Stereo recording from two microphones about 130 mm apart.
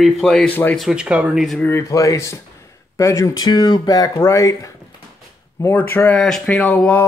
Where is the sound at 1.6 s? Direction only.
20° left (ahead or behind).